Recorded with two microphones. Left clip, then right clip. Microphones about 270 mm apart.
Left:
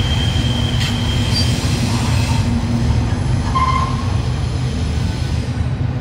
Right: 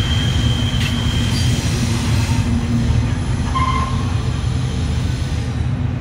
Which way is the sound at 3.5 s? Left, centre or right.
Left.